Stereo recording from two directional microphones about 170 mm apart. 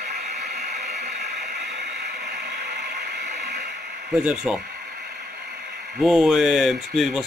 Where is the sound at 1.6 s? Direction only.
75° right (ahead or behind).